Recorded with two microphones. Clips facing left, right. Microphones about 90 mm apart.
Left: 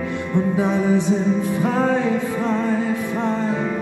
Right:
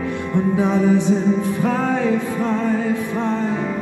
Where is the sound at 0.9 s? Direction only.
20° left (ahead or behind).